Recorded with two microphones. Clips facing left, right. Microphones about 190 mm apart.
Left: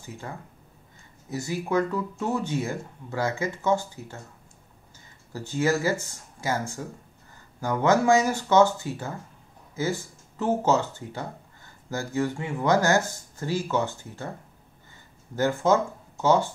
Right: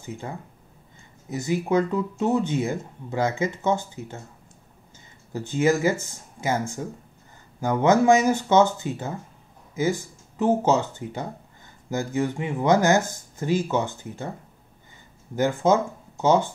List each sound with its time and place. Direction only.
1.3 s speech: 20° right (ahead or behind)
5.3 s speech: 20° right (ahead or behind)
15.3 s speech: 20° right (ahead or behind)